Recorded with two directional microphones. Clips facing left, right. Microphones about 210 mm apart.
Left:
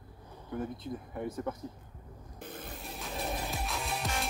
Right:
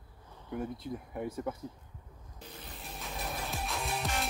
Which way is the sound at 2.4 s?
50° left (ahead or behind).